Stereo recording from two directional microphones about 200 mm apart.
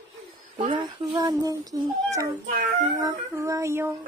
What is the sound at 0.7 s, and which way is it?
A child's voice, 20° right (ahead or behind).